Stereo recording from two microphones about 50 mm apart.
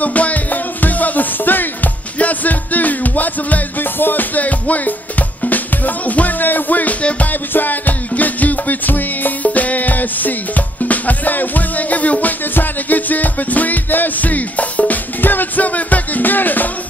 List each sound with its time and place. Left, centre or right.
0.0 s music: left
7.5 s music: left